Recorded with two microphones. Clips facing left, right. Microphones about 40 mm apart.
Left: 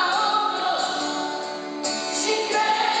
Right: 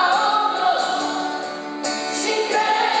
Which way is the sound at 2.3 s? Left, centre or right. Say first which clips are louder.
Right 2 dB; centre.